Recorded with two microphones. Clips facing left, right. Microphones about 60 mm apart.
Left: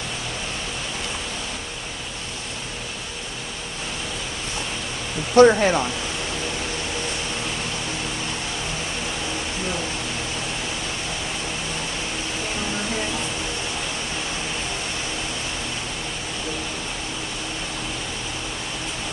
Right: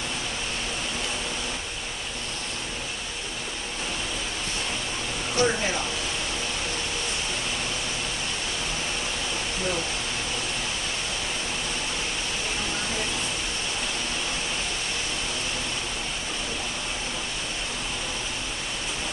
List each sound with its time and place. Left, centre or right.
5.3 s speech: left